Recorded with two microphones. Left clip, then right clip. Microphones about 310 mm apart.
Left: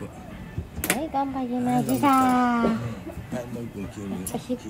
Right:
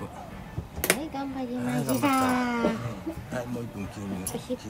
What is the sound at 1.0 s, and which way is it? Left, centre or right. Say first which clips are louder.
A child's voice: left 7 dB; centre.